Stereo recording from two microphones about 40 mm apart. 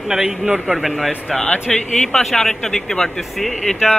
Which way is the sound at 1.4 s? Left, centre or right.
Left.